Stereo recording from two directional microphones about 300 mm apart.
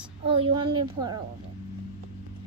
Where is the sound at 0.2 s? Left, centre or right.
Centre.